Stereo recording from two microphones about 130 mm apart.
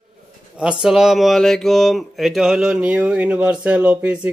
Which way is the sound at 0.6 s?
5° right (ahead or behind).